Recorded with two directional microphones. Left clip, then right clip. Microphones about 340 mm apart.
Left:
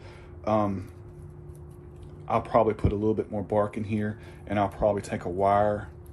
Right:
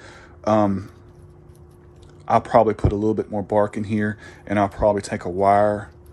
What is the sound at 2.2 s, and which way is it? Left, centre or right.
Speech, right.